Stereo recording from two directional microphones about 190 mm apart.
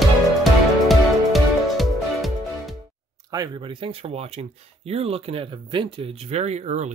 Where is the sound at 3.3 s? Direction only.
20° right (ahead or behind).